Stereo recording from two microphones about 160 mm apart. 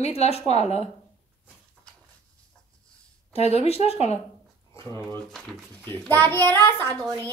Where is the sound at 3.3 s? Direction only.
40° left (ahead or behind).